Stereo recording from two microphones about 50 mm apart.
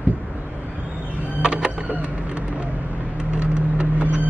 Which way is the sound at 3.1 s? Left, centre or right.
Right.